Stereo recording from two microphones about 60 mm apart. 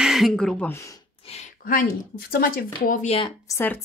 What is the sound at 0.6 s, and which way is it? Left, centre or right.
Speech, left.